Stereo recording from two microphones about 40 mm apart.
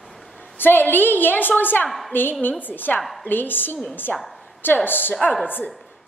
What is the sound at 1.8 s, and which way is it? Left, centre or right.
Speech, centre.